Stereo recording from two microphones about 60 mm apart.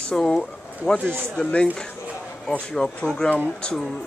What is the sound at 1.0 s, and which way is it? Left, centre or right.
Speech, right.